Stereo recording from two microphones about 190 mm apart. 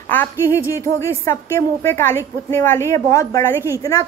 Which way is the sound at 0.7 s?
15° left (ahead or behind).